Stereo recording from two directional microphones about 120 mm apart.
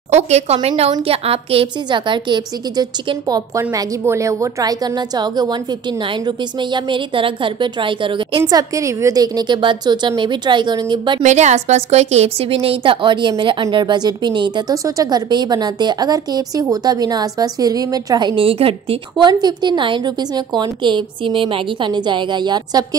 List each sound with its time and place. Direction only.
0.1 s a woman's voice: 65° right (ahead or behind); by 11.2 s 40° right (ahead or behind)
11.2 s a woman's voice: 75° right (ahead or behind); by 18.3 s 30° right (ahead or behind)
18.3 s a woman's voice: 50° right (ahead or behind)
19.1 s a woman's voice: 35° right (ahead or behind)